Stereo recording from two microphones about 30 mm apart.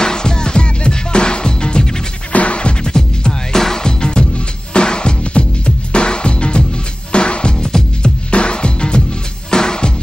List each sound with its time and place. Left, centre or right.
0.0 s music: left
2.3 s music: left
2.9 s music: left